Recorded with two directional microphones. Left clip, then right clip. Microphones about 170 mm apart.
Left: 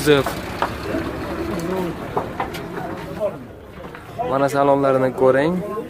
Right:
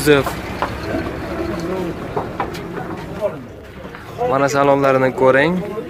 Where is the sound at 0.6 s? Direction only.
50° left (ahead or behind).